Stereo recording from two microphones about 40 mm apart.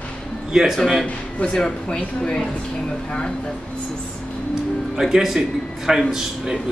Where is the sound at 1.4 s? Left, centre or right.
Left.